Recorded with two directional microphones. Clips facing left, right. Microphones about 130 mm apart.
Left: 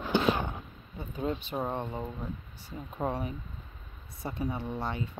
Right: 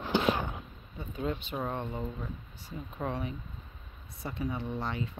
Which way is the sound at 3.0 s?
40° left (ahead or behind).